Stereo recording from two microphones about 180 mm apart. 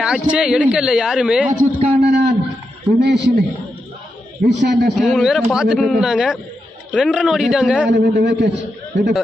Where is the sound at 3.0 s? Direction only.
70° right (ahead or behind).